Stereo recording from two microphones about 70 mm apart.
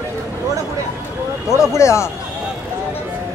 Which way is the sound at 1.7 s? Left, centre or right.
Left.